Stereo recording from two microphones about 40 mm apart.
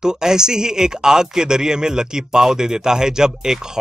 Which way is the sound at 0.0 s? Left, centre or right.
Centre.